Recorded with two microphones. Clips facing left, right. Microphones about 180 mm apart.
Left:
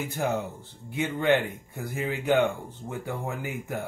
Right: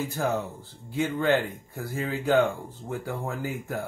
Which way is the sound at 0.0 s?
20° left (ahead or behind).